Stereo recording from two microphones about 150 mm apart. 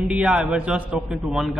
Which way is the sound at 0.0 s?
5° right (ahead or behind).